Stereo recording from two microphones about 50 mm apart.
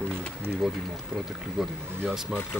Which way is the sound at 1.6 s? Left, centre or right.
Centre.